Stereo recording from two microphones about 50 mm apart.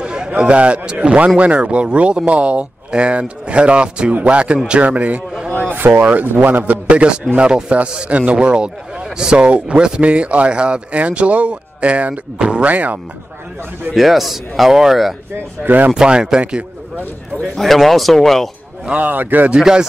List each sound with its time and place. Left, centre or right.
0.0 s a sound: centre
0.4 s a man's voice: right
5.7 s a man's voice: right
12.7 s a man's voice: right
13.9 s a man's voice: centre
15.6 s a man's voice: right
15.9 s speech: centre
17.4 s a man's voice: centre
18.9 s a man's voice: right
19.5 s speech: centre